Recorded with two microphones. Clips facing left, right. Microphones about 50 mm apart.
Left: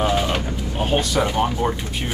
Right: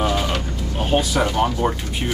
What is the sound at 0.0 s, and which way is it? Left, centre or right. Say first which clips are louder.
Bird: left 1 dB; centre.